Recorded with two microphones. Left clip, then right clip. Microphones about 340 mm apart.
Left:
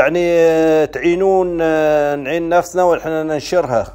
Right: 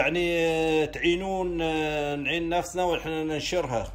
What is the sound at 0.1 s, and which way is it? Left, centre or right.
A man's voice, centre.